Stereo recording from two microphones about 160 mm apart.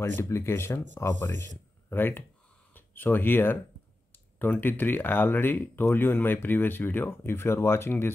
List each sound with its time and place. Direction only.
0.2 s speech: 15° left (ahead or behind)